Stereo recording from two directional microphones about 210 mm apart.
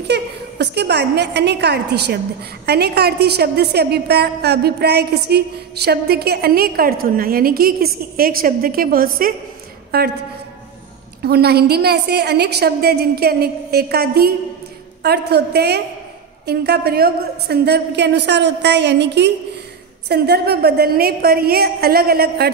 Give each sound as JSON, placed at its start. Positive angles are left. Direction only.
{"t": 0.1, "sound": "a woman's voice", "side_deg": -55}
{"t": 11.2, "sound": "a woman's voice", "side_deg": -50}